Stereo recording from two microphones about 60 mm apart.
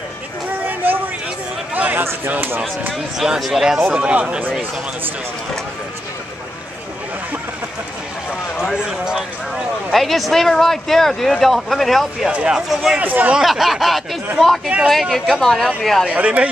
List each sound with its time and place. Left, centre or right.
0.7 s a sound: right
2.9 s speech: centre
8.7 s speech: centre
9.8 s speech: centre
12.3 s speech: centre
12.5 s speech: centre
13.0 s speech: right
13.3 s speech: centre
16.1 s speech: right